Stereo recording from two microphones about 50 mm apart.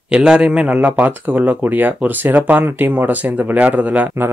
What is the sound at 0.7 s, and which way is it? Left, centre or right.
Speech, right.